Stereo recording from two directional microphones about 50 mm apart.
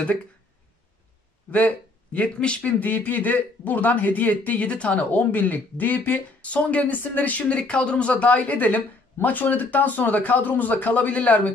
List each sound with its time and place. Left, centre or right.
2.1 s speech: left
2.8 s a man's voice: left